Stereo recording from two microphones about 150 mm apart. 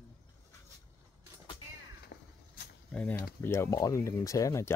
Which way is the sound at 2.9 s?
10° left (ahead or behind).